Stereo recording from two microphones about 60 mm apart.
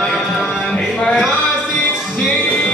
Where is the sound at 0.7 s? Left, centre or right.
Centre.